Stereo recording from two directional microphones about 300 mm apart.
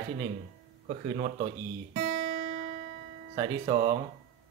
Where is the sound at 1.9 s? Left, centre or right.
Right.